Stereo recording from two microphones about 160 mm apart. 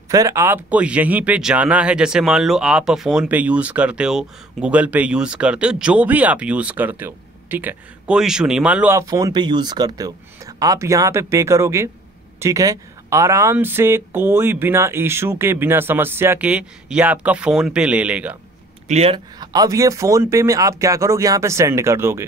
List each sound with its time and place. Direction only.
0.1 s speech: 20° right (ahead or behind)
8.9 s speech: 20° right (ahead or behind)
18.9 s speech: 40° right (ahead or behind)
19.1 s speech: 25° right (ahead or behind)